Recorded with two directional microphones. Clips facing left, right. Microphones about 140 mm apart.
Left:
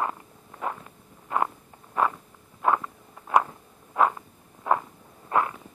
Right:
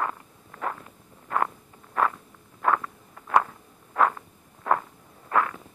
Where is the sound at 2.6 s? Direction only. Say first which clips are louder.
Left 1 dB; 15° left (ahead or behind).